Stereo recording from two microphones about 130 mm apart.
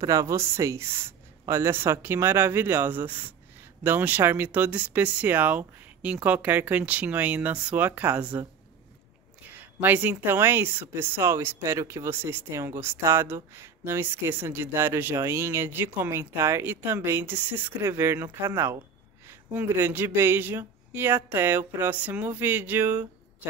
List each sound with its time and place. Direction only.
0.0 s a woman's voice: 25° right (ahead or behind)
9.5 s a woman's voice: 15° right (ahead or behind)